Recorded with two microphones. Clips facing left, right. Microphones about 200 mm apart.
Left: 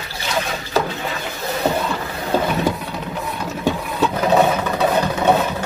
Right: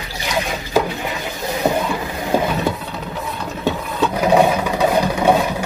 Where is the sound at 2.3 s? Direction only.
15° right (ahead or behind).